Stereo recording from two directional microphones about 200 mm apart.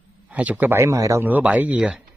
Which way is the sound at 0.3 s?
5° right (ahead or behind).